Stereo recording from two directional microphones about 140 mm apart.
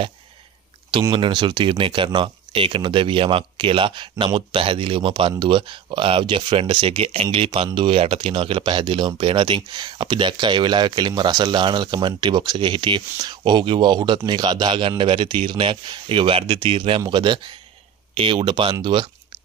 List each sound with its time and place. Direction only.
1.1 s speech: 35° right (ahead or behind)